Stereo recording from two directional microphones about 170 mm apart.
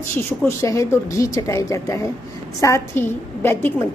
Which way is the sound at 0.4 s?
15° left (ahead or behind).